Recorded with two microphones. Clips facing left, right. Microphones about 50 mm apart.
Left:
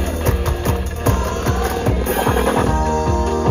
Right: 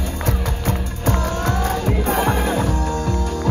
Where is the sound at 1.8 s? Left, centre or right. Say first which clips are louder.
Left 1 dB; left.